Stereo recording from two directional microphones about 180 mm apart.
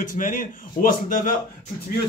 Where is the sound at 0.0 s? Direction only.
50° left (ahead or behind).